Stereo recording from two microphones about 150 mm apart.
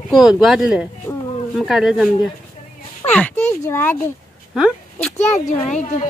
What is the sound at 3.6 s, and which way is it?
Speech, 15° left (ahead or behind).